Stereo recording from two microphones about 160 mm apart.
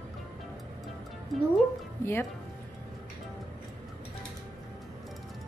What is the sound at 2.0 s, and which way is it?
Speech, 15° left (ahead or behind).